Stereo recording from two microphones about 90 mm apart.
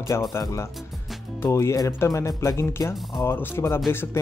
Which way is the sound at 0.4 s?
35° left (ahead or behind).